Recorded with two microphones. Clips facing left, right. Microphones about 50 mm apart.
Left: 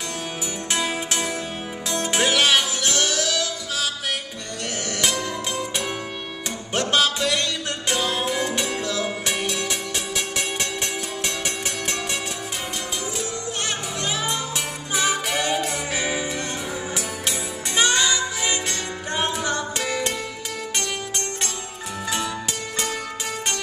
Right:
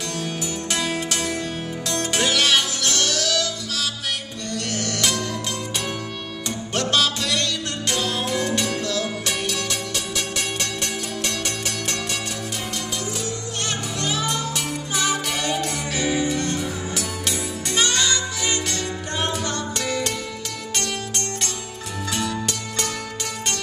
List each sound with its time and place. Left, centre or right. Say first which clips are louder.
0.7 s music: left 1 dB; centre
6.7 s music: left 1 dB; centre
14.0 s music: right 2 dB; centre
22.1 s music: right 2 dB; centre